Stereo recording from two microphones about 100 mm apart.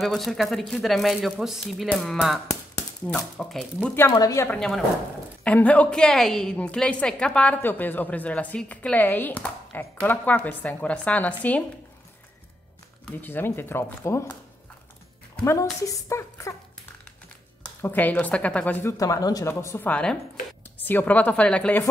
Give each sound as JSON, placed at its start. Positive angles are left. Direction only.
{"t": 0.0, "sound": "a woman's voice", "side_deg": 5}
{"t": 4.1, "sound": "a woman's voice", "side_deg": 35}
{"t": 4.6, "sound": "speech", "side_deg": 5}
{"t": 5.4, "sound": "a woman's voice", "side_deg": 15}
{"t": 13.1, "sound": "speech", "side_deg": 20}
{"t": 15.4, "sound": "a woman's voice", "side_deg": 35}
{"t": 17.8, "sound": "a woman's voice", "side_deg": 15}
{"t": 18.8, "sound": "a woman's voice", "side_deg": 30}
{"t": 19.8, "sound": "a woman's voice", "side_deg": 10}